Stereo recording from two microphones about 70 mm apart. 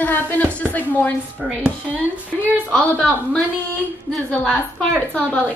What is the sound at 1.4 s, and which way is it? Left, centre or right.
Speech, centre.